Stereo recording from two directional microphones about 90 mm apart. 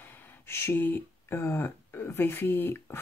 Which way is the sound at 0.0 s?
25° left (ahead or behind).